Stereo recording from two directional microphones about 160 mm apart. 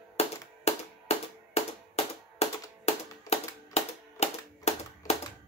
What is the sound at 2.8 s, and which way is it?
Music, 40° left (ahead or behind).